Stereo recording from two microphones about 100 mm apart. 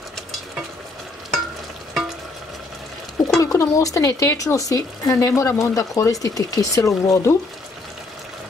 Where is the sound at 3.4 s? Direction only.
30° left (ahead or behind).